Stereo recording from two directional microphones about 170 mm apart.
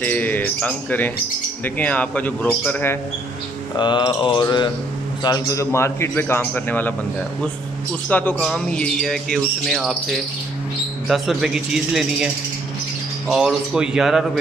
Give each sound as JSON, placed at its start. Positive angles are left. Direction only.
{"t": 0.0, "sound": "a man's voice", "side_deg": 10}
{"t": 3.7, "sound": "mantra", "side_deg": 25}
{"t": 5.2, "sound": "a man's voice", "side_deg": 20}
{"t": 8.1, "sound": "speech", "side_deg": 10}
{"t": 11.1, "sound": "speech", "side_deg": -5}
{"t": 13.3, "sound": "speech", "side_deg": -5}